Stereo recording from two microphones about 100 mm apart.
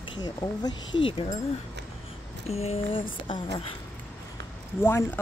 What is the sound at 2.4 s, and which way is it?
Speech, 90° left.